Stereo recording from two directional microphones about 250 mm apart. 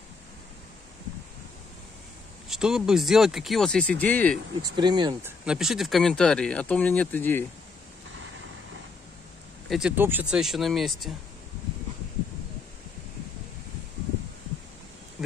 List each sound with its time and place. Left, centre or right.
2.4 s speech: centre
4.6 s speech: centre
5.4 s speech: centre
9.7 s speech: centre